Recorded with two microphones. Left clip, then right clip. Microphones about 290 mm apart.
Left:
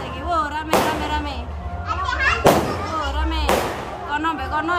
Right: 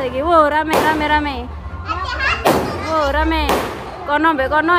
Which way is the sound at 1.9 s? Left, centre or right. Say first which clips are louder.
Right 1 dB; right.